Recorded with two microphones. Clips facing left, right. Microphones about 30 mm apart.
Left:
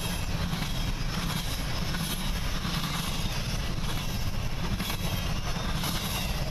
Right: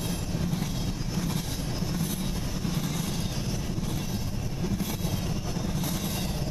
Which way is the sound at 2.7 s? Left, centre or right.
Left.